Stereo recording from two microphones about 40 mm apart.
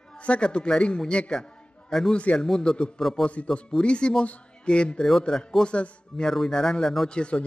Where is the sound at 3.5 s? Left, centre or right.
Left.